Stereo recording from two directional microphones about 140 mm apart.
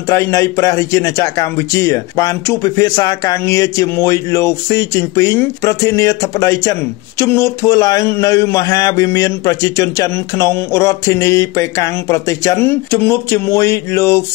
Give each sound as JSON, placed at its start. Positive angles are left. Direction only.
{"t": 0.1, "sound": "a man's voice", "side_deg": 20}